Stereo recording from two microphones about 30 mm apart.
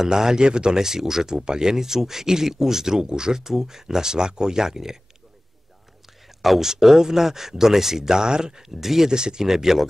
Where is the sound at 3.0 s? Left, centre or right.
Right.